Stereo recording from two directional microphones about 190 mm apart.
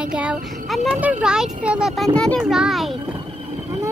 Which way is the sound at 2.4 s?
5° right (ahead or behind).